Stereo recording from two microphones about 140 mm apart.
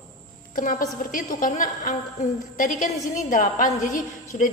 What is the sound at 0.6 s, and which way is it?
A woman's voice, 75° left (ahead or behind).